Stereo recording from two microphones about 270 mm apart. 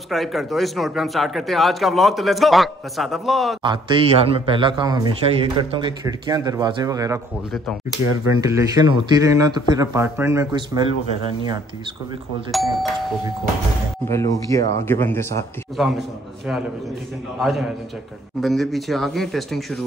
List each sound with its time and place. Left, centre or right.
0.1 s a man's voice: centre
3.6 s speech: centre
8.4 s speech: centre
12.4 s a man's voice: centre
14.0 s speech: centre
17.4 s a man's voice: centre